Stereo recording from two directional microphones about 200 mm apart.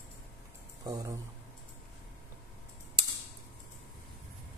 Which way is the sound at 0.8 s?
20° right (ahead or behind).